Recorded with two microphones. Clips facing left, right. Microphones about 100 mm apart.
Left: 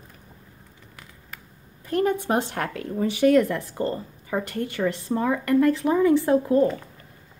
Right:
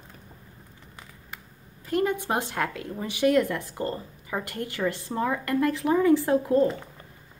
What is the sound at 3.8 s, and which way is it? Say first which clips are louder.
Speech: left 4 dB; 30° left (ahead or behind).